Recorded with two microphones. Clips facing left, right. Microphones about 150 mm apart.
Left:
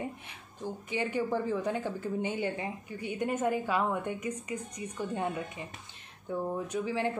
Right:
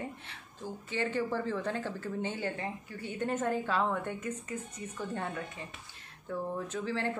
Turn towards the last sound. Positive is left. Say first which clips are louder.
# left 3 dB
turn(degrees=15)  # may be behind; listen again after turning